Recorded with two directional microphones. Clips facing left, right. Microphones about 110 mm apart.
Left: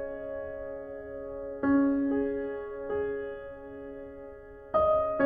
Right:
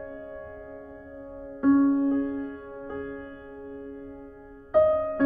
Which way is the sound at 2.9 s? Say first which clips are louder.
Left 5 dB; 30° right (ahead or behind).